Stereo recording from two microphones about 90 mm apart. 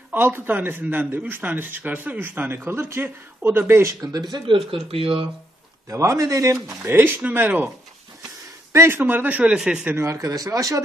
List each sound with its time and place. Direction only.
0.1 s speech: 20° right (ahead or behind)
4.3 s speech: 80° right
5.9 s speech: 35° right (ahead or behind)
6.9 s a man's voice: 25° right (ahead or behind)
8.7 s a man's voice: 25° right (ahead or behind); by 9.8 s 10° right (ahead or behind)
9.8 s speech: 30° right (ahead or behind)